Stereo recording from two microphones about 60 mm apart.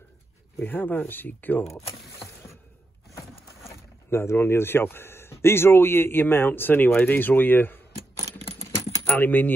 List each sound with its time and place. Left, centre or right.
0.6 s a man's voice: left
4.1 s a man's voice: left
9.2 s a man's voice: left